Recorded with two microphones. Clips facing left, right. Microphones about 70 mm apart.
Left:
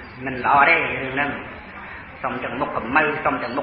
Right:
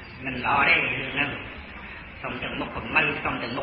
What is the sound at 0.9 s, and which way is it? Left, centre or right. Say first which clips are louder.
A man's voice: left 5 dB; left.